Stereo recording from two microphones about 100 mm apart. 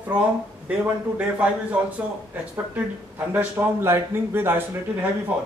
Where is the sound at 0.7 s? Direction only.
15° right (ahead or behind).